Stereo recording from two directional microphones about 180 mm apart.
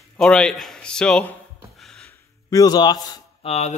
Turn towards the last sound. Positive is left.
turn(degrees=40)  # may be behind; listen again after turning